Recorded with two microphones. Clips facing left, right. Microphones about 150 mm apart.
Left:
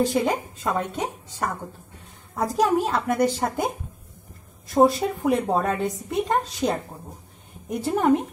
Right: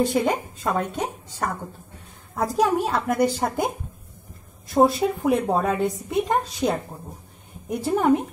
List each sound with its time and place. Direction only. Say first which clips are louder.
0.0 s a woman's voice: right 1 dB; centre (ahead or behind)
4.7 s a woman's voice: even; centre (ahead or behind)
7.9 s a woman's voice: right 1 dB; centre (ahead or behind)